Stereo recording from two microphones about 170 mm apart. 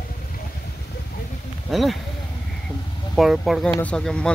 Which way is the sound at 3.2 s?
Centre (ahead or behind).